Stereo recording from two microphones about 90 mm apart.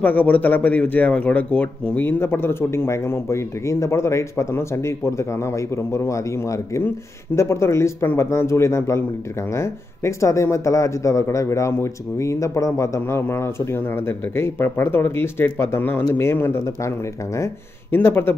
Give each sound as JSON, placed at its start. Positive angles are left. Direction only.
{"t": 0.0, "sound": "a man's voice", "side_deg": 20}
{"t": 17.9, "sound": "a man's voice", "side_deg": 25}